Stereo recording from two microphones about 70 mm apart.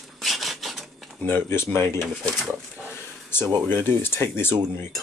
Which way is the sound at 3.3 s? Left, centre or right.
Left.